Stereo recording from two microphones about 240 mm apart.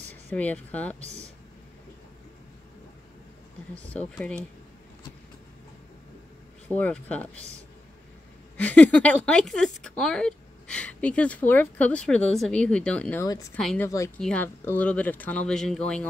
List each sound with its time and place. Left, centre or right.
0.3 s speech: centre
1.0 s a sound: right
6.7 s speech: centre
8.5 s a woman's voice: centre
13.6 s a woman's voice: centre
13.8 s a woman's voice: centre